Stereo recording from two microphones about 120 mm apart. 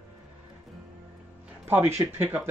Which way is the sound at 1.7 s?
20° right (ahead or behind).